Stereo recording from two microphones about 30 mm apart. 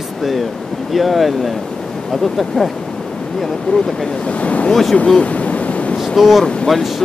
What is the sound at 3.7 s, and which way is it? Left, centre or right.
Speech, left.